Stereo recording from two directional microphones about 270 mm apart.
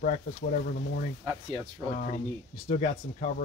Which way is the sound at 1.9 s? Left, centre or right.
Left.